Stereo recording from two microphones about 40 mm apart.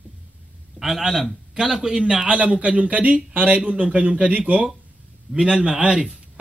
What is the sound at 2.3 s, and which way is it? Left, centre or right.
Speech, right.